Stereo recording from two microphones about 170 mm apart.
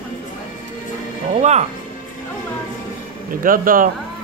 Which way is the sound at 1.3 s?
40° right (ahead or behind).